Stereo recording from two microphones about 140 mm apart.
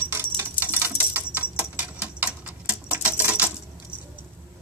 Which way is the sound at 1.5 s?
10° right (ahead or behind).